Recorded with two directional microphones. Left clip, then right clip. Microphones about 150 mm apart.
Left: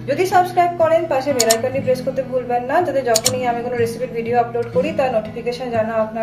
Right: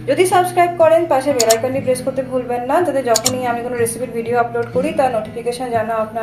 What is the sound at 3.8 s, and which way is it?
Speech, 15° right (ahead or behind).